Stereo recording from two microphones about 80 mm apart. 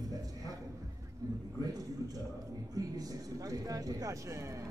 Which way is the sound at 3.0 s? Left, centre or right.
Right.